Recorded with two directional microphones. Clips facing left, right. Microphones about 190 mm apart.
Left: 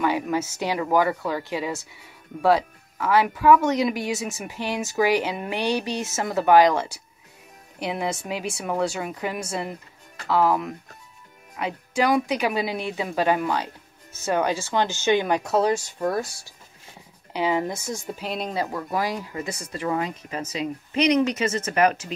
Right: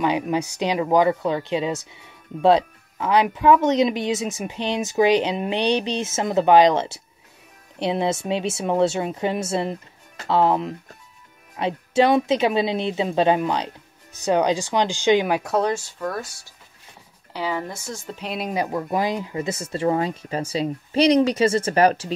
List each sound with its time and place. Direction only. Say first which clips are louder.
0.0 s speech: right 2 dB; 20° right (ahead or behind); by 15.7 s centre (ahead or behind)
16.0 s speech: left 3 dB; 25° left (ahead or behind)
18.2 s speech: right 2 dB; centre (ahead or behind)
18.5 s speech: right 6 dB; 20° right (ahead or behind)